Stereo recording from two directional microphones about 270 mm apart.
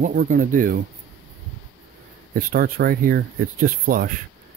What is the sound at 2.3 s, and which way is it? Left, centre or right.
Speech, right.